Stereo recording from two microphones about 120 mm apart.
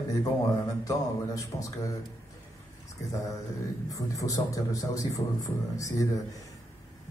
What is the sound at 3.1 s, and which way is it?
Speech, 25° left (ahead or behind).